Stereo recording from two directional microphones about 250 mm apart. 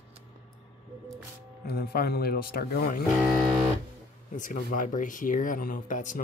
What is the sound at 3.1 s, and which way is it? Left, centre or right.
Speech, centre.